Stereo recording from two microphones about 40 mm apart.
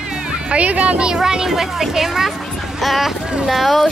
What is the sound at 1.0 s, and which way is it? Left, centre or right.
Speech, centre.